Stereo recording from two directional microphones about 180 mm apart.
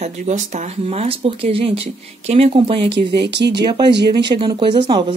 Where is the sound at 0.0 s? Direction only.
40° right (ahead or behind).